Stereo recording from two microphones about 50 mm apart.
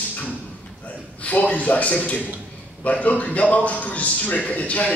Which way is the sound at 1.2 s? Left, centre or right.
Left.